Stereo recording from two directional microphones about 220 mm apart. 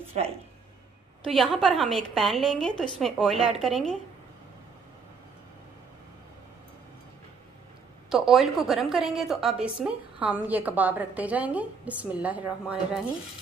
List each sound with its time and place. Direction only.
0.2 s speech: 30° right (ahead or behind)
1.2 s a woman's voice: centre (ahead or behind)
8.1 s a woman's voice: centre (ahead or behind)